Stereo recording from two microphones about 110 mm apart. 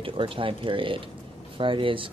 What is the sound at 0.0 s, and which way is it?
Speech, 55° right (ahead or behind).